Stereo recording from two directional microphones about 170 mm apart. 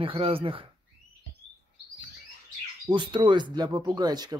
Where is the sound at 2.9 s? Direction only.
25° right (ahead or behind).